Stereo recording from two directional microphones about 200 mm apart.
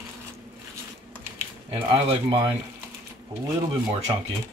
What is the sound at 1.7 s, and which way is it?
Speech, 25° right (ahead or behind).